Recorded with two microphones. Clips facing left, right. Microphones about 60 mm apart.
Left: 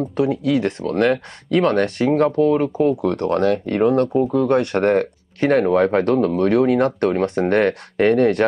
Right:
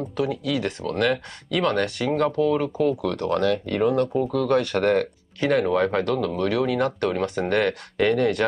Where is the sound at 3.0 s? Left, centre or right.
Left.